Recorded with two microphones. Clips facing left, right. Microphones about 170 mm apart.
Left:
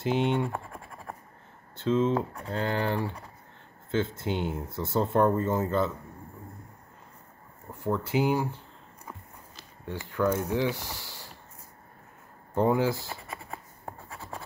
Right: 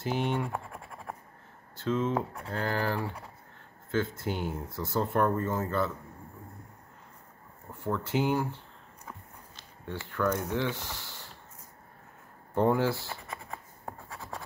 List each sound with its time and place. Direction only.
0.0 s speech: 20° left (ahead or behind)
0.5 s scratch: 5° right (ahead or behind)
1.8 s speech: 25° left (ahead or behind)
7.8 s speech: 10° left (ahead or behind)
9.8 s speech: 10° left (ahead or behind)
12.5 s speech: 15° left (ahead or behind)
13.3 s writing: 5° left (ahead or behind)